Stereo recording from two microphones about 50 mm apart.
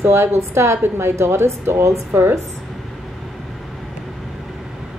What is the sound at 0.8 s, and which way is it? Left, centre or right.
Speech, right.